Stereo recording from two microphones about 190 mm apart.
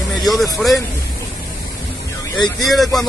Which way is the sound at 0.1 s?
Centre (ahead or behind).